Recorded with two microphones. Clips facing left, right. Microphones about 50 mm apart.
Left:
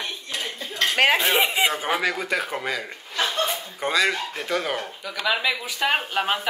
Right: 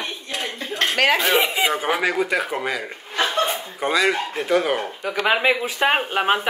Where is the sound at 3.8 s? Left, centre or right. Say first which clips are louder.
Right 3 dB; centre.